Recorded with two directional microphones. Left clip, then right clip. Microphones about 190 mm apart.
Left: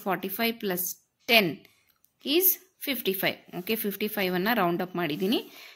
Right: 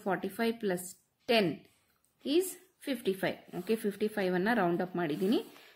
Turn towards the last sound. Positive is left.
turn(degrees=15)  # may be behind; listen again after turning